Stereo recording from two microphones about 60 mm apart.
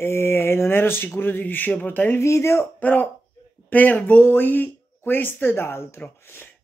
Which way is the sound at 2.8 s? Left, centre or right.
Left.